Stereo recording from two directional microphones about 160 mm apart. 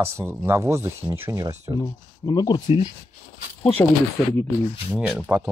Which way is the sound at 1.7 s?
25° left (ahead or behind).